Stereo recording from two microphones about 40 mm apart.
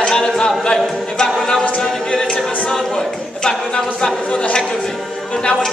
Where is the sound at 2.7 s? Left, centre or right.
Centre.